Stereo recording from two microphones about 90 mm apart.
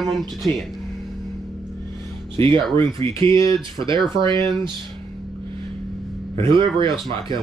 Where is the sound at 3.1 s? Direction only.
35° left (ahead or behind).